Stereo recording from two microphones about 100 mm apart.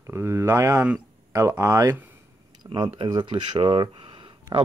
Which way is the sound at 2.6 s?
45° right (ahead or behind).